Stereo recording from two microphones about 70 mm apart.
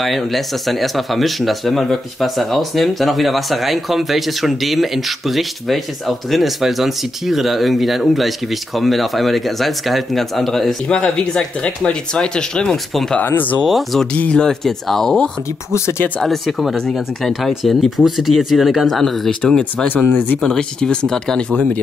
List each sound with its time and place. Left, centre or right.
0.0 s speech: centre
11.0 s speech: centre
13.2 s speech: left
13.7 s speech: centre
14.1 s speech: centre
15.7 s speech: left
16.2 s speech: centre
20.1 s speech: left
20.4 s speech: centre